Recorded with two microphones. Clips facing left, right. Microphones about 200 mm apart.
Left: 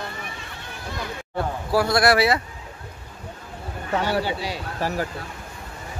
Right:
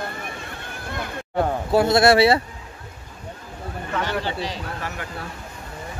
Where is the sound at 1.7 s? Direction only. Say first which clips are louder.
Right 3 dB; 25° right (ahead or behind).